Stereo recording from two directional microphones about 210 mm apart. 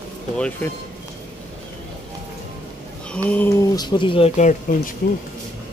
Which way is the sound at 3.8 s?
20° left (ahead or behind).